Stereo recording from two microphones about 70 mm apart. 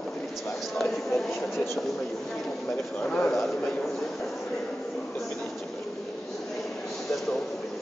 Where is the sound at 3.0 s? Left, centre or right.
Centre.